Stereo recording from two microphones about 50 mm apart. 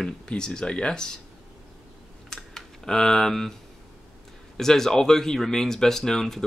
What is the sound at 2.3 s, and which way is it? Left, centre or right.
Computer keyboard, centre.